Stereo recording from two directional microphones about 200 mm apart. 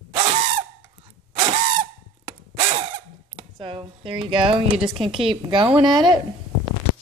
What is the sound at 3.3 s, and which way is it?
Speech, 25° right (ahead or behind).